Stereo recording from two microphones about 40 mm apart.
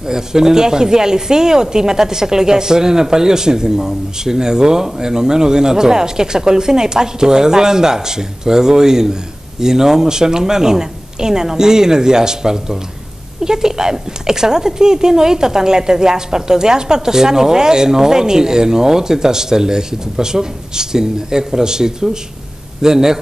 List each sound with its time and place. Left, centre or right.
0.1 s speech: centre